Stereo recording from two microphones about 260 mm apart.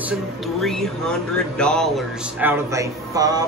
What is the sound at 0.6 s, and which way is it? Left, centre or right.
Speech, centre.